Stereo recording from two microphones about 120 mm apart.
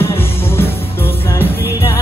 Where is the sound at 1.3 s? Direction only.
20° left (ahead or behind).